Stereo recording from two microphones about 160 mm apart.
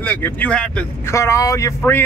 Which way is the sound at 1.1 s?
20° left (ahead or behind).